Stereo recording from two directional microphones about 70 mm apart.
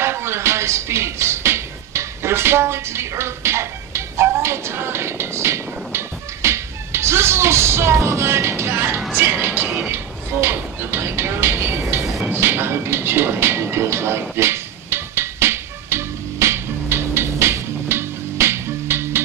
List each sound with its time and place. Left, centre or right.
0.0 s music: right
9.1 s speech: right
12.3 s a sound: right